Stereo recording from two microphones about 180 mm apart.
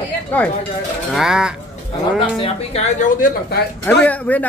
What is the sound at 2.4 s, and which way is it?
Speech, 35° left (ahead or behind).